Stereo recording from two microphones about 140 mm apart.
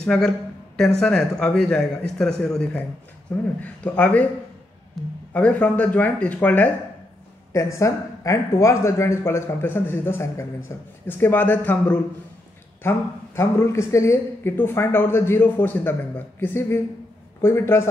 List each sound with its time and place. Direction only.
0.0 s a man's voice: 5° left (ahead or behind)
5.3 s speech: 10° left (ahead or behind)
7.5 s speech: 20° left (ahead or behind)